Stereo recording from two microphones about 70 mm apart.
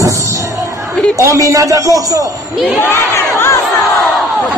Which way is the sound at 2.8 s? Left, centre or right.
Left.